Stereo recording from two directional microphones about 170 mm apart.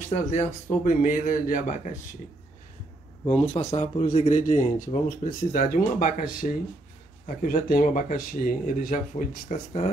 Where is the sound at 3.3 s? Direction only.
35° left (ahead or behind).